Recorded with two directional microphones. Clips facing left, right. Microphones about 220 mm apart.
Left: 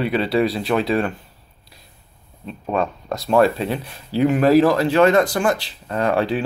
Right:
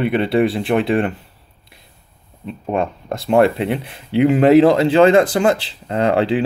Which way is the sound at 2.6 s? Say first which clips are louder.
Right 2 dB; 25° right (ahead or behind).